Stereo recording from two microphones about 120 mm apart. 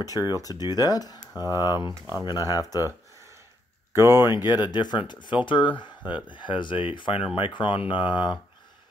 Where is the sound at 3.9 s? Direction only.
20° right (ahead or behind).